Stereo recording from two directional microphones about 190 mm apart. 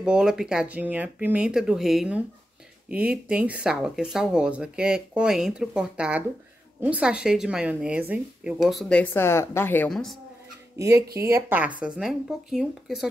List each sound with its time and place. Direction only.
0.0 s speech: 5° right (ahead or behind)
10.8 s speech: 15° right (ahead or behind)